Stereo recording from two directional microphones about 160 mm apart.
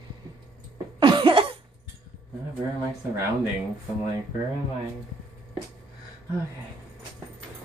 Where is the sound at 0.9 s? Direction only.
30° right (ahead or behind).